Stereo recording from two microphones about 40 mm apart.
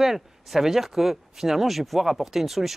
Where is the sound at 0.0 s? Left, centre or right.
Centre.